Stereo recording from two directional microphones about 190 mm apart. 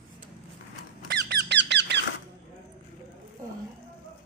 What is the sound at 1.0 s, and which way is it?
Squeak, 60° right (ahead or behind).